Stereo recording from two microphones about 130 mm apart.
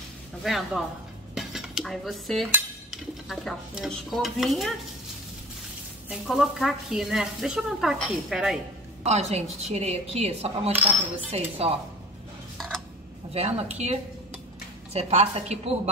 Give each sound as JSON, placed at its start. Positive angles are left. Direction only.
{"t": 0.4, "sound": "speech", "side_deg": 0}
{"t": 1.3, "sound": "dishes", "side_deg": -5}
{"t": 6.0, "sound": "speech", "side_deg": -5}
{"t": 9.0, "sound": "speech", "side_deg": -55}
{"t": 12.5, "sound": "a sound", "side_deg": 0}
{"t": 13.3, "sound": "speech", "side_deg": -50}